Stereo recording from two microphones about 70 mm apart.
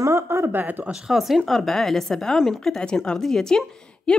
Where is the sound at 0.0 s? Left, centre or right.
Right.